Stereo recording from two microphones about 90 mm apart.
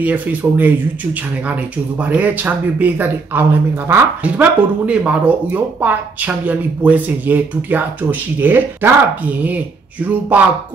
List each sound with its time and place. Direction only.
0.0 s speech: 20° right (ahead or behind)
4.2 s speech: 15° right (ahead or behind)